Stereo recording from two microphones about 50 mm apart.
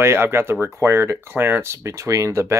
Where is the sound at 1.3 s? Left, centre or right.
Right.